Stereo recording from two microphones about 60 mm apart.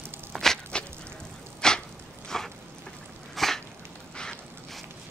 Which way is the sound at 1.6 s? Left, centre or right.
Centre.